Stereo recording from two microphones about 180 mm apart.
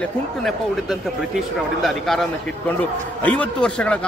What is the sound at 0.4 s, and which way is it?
Speech, centre (ahead or behind).